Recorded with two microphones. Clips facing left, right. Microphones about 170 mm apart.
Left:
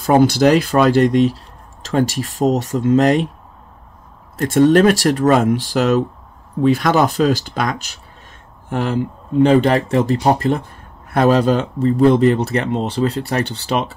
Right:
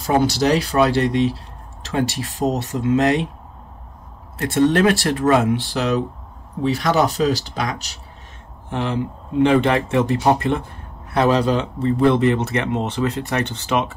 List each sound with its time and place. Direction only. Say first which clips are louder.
0.0 s speech: left 5 dB; 50° left (ahead or behind)
4.4 s speech: left 5 dB; 40° left (ahead or behind)
6.7 s speech: left 2 dB; 50° left (ahead or behind)
11.1 s speech: left 3 dB; 50° left (ahead or behind)